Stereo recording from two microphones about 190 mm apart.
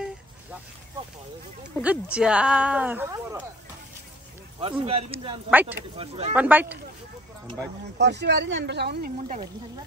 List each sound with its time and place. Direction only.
1.8 s speech: 5° right (ahead or behind)
4.6 s speech: 30° right (ahead or behind)
5.5 s speech: 10° right (ahead or behind)
5.9 s speech: 30° right (ahead or behind)
6.3 s speech: 10° right (ahead or behind)
8.0 s speech: 65° right (ahead or behind)